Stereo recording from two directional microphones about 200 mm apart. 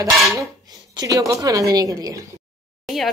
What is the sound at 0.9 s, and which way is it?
A woman's voice, 20° right (ahead or behind).